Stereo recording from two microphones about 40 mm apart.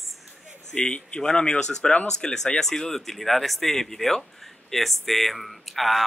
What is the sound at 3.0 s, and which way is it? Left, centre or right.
A man's voice, centre.